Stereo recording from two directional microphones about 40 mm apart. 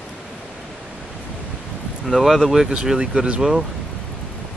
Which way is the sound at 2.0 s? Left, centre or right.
Centre.